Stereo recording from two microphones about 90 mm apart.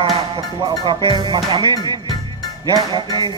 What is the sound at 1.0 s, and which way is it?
Music, 60° right (ahead or behind).